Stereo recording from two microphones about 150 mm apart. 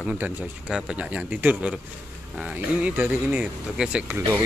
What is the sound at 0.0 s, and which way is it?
Speech, 10° right (ahead or behind).